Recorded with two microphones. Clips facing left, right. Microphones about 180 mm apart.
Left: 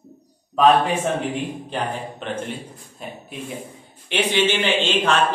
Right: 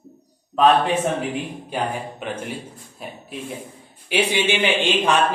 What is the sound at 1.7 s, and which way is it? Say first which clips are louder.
A man's voice: right 4 dB; 10° right (ahead or behind).